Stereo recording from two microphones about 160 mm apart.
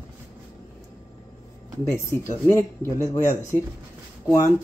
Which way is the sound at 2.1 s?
15° left (ahead or behind).